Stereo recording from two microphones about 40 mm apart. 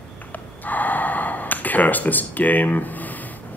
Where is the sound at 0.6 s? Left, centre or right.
Left.